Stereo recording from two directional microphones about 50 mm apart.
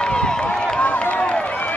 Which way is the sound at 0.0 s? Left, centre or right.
Centre.